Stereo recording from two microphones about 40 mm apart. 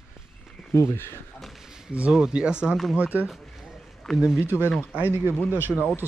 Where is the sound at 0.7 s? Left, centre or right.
Left.